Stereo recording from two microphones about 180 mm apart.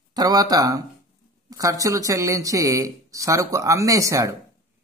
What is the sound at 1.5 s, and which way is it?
Speech, 20° right (ahead or behind).